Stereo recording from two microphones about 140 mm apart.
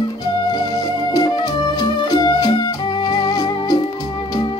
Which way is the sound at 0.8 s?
30° left (ahead or behind).